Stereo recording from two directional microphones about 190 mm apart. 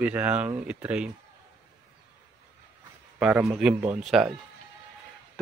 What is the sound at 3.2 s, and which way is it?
Speech, 5° right (ahead or behind).